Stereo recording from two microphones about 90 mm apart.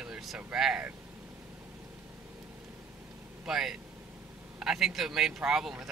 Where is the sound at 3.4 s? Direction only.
5° right (ahead or behind).